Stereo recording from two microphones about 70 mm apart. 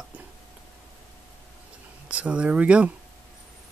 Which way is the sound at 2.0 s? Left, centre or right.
Centre.